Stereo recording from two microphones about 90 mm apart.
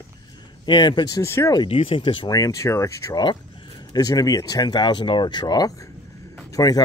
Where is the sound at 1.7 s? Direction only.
90° left; by 2.2 s 75° left (ahead or behind).